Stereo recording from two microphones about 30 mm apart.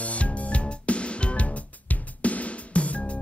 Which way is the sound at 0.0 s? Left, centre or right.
Left.